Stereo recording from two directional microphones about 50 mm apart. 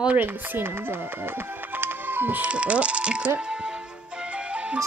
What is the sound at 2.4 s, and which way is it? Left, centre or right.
Speech, right.